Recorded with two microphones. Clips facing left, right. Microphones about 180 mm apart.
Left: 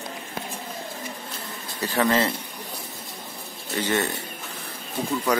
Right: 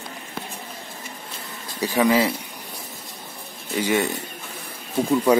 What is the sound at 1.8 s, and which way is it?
Speech, 10° right (ahead or behind).